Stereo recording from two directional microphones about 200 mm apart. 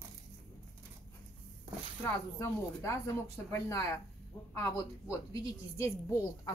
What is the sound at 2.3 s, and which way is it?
A woman's voice, 15° left (ahead or behind).